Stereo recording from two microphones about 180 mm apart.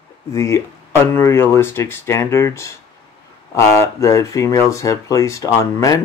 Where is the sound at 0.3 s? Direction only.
15° left (ahead or behind).